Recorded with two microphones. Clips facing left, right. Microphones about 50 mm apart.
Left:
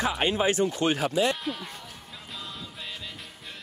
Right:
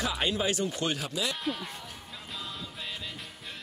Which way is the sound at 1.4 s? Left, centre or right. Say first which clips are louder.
Even; centre.